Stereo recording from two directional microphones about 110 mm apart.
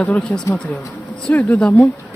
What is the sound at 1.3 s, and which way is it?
Speech, 20° left (ahead or behind).